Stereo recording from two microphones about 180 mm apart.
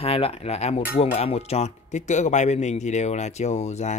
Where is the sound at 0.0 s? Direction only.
35° left (ahead or behind).